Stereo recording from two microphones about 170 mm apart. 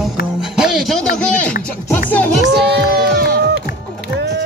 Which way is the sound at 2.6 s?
80° right.